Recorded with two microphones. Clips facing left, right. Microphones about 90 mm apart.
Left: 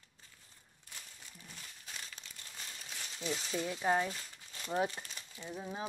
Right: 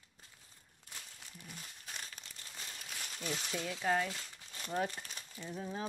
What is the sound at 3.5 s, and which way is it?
Speech, 20° left (ahead or behind).